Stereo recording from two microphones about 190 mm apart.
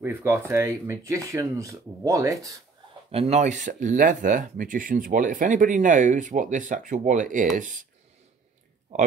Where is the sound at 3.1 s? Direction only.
35° right (ahead or behind).